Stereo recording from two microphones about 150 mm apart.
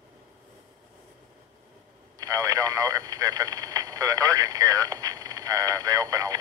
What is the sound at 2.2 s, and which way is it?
Radio, 25° right (ahead or behind).